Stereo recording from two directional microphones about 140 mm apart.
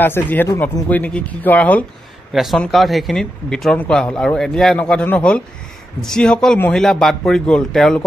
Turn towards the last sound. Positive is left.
turn(degrees=5)  # may be behind; listen again after turning